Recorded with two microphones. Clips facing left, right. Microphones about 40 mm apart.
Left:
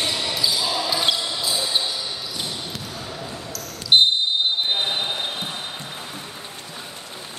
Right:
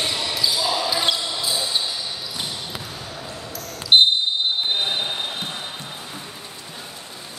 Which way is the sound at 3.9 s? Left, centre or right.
Centre.